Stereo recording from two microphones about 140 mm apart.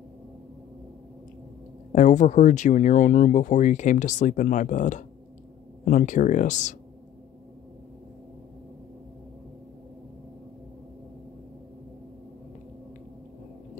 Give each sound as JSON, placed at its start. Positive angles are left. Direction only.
{"t": 1.9, "sound": "speech", "side_deg": 60}